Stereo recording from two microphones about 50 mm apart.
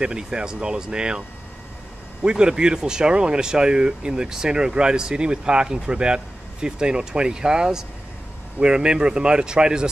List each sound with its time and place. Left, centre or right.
0.0 s speech: centre
2.2 s speech: centre